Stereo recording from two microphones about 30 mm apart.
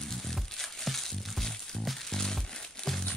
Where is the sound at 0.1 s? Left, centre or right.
Centre.